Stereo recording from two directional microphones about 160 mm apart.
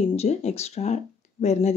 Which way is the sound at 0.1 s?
40° left (ahead or behind).